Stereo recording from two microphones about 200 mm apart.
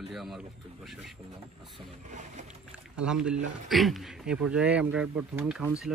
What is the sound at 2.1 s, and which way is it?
Boat, 35° right (ahead or behind).